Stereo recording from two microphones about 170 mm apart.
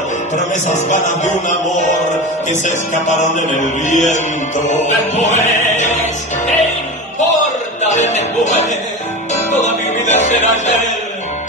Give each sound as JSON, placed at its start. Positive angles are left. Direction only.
{"t": 0.7, "sound": "music", "side_deg": 45}
{"t": 2.6, "sound": "music", "side_deg": 45}
{"t": 7.8, "sound": "music", "side_deg": 45}